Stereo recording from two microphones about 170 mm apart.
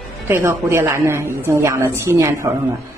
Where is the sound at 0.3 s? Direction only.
15° right (ahead or behind).